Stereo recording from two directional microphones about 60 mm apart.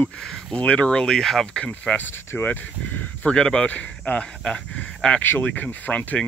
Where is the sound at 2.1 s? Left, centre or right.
Left.